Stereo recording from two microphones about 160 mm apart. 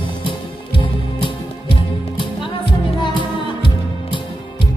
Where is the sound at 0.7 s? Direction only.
30° left (ahead or behind).